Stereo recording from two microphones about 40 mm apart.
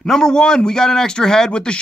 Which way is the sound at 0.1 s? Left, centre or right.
Centre.